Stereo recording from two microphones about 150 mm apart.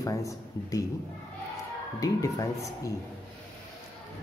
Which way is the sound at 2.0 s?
25° left (ahead or behind).